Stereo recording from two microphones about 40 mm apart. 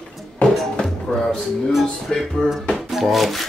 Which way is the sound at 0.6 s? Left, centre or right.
Centre.